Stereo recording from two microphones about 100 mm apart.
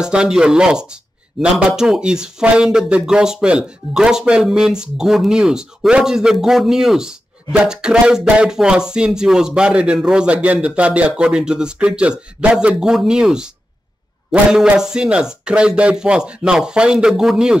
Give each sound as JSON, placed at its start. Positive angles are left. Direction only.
{"t": 0.0, "sound": "speech", "side_deg": -10}